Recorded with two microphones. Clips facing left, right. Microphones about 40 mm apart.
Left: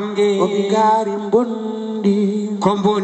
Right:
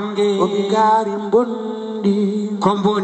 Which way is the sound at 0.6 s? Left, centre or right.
Centre.